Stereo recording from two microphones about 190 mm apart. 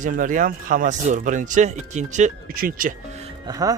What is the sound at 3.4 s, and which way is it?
Speech, 20° right (ahead or behind).